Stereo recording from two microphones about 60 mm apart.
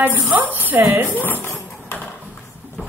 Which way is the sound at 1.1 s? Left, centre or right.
Left.